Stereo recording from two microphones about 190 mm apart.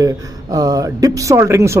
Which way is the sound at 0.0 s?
20° right (ahead or behind).